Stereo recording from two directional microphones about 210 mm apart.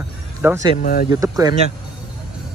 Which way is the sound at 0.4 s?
10° right (ahead or behind).